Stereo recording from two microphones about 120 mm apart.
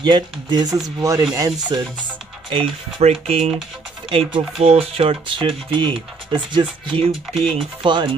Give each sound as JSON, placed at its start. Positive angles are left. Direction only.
{"t": 0.0, "sound": "speech", "side_deg": -40}
{"t": 3.0, "sound": "speech", "side_deg": -60}
{"t": 7.3, "sound": "speech", "side_deg": 5}
{"t": 7.8, "sound": "speech", "side_deg": -40}